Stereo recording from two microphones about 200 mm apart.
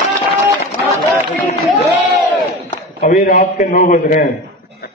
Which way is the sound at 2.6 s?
50° left (ahead or behind).